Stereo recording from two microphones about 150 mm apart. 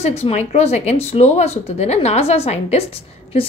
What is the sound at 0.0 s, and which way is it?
A woman's voice, 45° left (ahead or behind).